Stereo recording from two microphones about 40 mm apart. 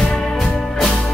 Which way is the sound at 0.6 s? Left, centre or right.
Centre.